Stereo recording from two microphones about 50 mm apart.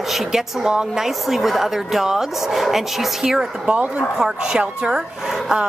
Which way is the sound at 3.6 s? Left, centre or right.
Right.